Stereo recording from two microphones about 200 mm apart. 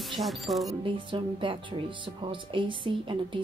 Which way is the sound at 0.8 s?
25° right (ahead or behind).